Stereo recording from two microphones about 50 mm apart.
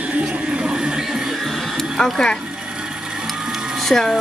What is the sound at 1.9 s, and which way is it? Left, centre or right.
Speech, centre.